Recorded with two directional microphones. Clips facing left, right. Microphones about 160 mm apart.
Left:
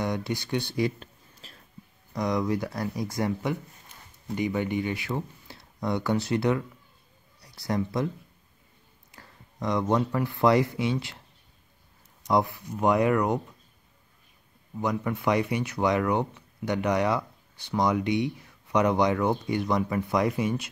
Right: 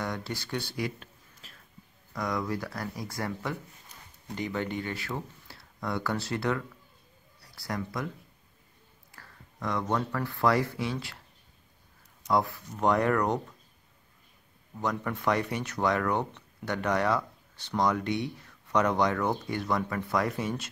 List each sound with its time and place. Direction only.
0.0 s a sound: 15° left (ahead or behind)
2.1 s speech: 20° left (ahead or behind)
9.1 s speech: 20° left (ahead or behind)
12.3 s speech: 15° left (ahead or behind)
14.8 s speech: 10° left (ahead or behind)